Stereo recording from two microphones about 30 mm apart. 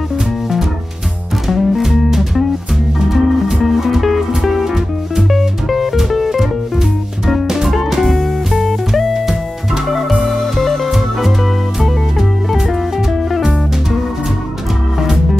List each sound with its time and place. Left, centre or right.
1.5 s music: centre
8.1 s music: centre
10.4 s music: centre